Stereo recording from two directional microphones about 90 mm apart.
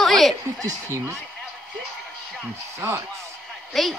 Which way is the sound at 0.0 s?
Centre (ahead or behind).